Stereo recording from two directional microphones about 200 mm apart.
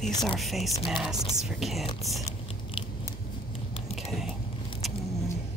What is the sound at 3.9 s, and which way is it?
Vehicle, centre (ahead or behind).